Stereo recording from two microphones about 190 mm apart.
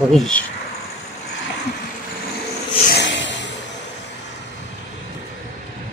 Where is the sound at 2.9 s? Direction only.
70° left (ahead or behind).